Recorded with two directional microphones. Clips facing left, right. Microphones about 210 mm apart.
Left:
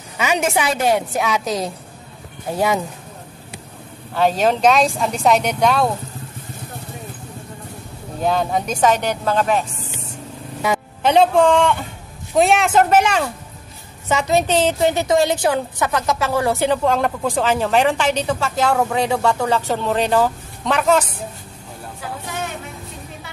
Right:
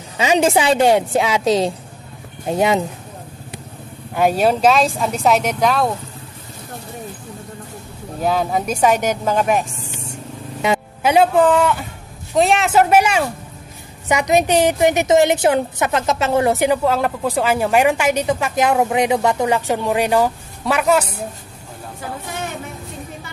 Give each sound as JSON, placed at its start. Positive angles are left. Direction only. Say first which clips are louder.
{"t": 0.2, "sound": "a woman's voice", "louder": "right 4 dB", "side_deg": -30}
{"t": 4.1, "sound": "speech", "louder": "right 1 dB", "side_deg": -10}
{"t": 8.2, "sound": "a woman's voice", "louder": "even", "side_deg": -5}
{"t": 11.0, "sound": "a woman's voice", "louder": "even", "side_deg": -10}